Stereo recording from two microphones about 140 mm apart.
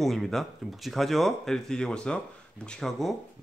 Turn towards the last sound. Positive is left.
turn(degrees=0)  # may be behind; listen again after turning